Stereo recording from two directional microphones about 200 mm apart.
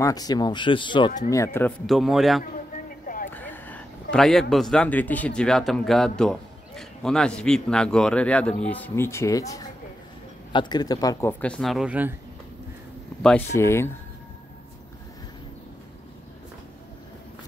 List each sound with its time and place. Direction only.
0.0 s speech: 20° left (ahead or behind)
1.3 s speech: 15° left (ahead or behind)
1.9 s a man's voice: centre (ahead or behind)
13.2 s speech: 10° left (ahead or behind)